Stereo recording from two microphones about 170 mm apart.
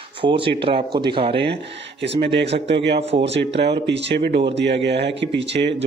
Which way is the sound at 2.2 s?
90° right.